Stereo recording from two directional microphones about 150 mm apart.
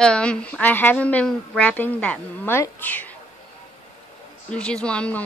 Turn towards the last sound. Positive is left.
turn(degrees=5)  # may be behind; listen again after turning